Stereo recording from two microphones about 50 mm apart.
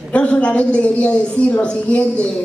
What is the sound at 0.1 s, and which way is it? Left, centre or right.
A woman's voice, left.